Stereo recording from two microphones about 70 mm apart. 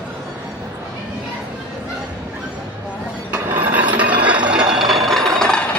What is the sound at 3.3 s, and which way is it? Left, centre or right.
Filing, right.